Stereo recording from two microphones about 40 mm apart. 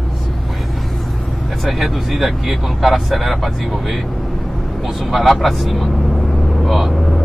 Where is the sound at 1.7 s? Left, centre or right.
Centre.